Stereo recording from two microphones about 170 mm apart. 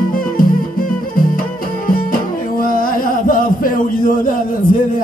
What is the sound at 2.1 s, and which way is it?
Music, 55° left (ahead or behind).